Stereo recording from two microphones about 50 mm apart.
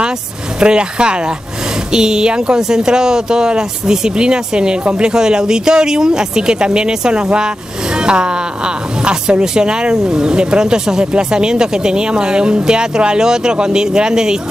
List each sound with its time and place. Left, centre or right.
0.6 s a woman's voice: centre